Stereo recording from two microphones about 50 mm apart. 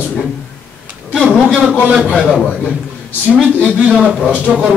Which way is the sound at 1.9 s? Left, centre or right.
Right.